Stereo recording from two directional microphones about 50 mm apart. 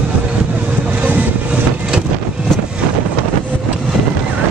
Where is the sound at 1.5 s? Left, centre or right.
Centre.